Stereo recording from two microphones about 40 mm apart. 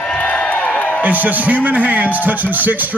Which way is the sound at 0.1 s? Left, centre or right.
Left.